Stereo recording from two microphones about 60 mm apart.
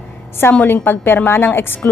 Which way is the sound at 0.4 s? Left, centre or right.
Left.